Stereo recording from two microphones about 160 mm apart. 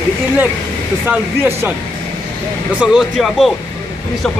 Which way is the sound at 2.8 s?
5° right (ahead or behind).